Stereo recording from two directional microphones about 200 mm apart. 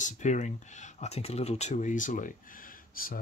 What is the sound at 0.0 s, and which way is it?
Speech, 35° left (ahead or behind).